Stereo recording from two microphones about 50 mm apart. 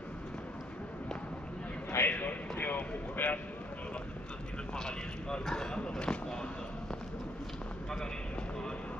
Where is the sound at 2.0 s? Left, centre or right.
Left.